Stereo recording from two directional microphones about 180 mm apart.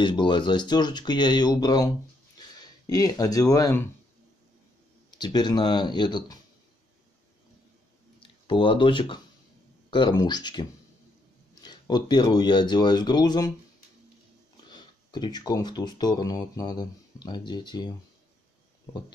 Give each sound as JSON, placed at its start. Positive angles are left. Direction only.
{"t": 0.0, "sound": "speech", "side_deg": 25}
{"t": 2.9, "sound": "speech", "side_deg": 20}
{"t": 5.2, "sound": "speech", "side_deg": 25}
{"t": 8.2, "sound": "speech", "side_deg": 30}
{"t": 14.7, "sound": "speech", "side_deg": 25}